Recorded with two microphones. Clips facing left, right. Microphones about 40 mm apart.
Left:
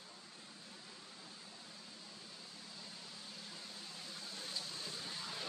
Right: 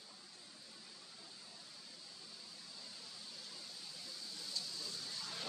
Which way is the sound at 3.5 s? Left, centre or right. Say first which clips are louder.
Left 2 dB; left.